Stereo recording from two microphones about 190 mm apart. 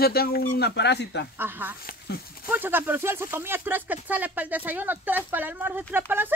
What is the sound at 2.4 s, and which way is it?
Speech, 10° right (ahead or behind).